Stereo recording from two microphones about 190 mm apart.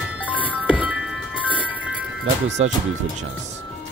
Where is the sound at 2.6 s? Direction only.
35° right (ahead or behind).